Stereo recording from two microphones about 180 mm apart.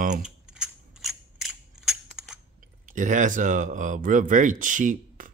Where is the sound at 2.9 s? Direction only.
45° right (ahead or behind).